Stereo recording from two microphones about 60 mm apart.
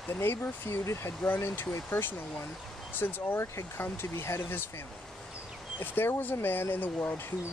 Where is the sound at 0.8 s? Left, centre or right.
Left.